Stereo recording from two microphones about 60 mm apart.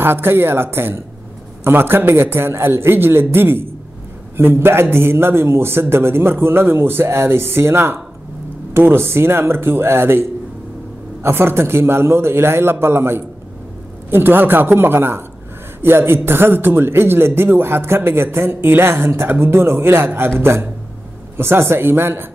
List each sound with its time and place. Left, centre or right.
0.0 s a man's voice: right
11.2 s a man's voice: right